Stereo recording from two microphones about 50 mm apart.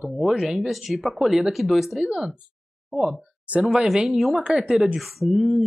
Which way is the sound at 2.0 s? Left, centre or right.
Centre.